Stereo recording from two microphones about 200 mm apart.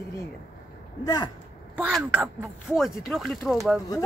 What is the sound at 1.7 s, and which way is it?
Speech, 10° right (ahead or behind).